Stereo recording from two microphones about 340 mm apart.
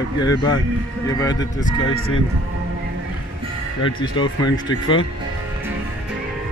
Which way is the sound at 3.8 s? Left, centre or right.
Centre.